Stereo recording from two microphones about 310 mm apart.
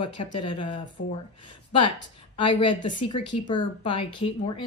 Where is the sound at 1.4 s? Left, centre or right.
Centre.